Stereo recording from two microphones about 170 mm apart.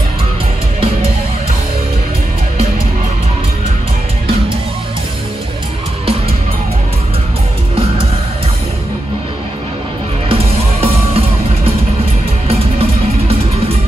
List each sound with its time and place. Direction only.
10.3 s music: 35° right (ahead or behind)